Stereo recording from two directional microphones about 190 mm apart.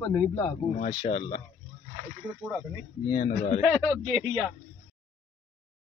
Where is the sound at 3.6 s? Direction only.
10° left (ahead or behind).